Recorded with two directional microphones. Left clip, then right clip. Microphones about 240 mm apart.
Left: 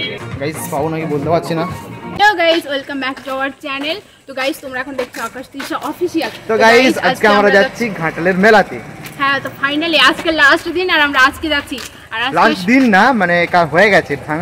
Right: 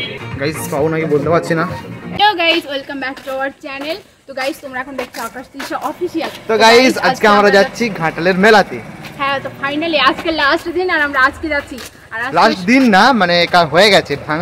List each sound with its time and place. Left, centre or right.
0.7 s speech: centre
2.1 s music: centre
2.7 s a woman's voice: centre
6.4 s speech: centre
9.2 s a woman's voice: centre
12.6 s speech: centre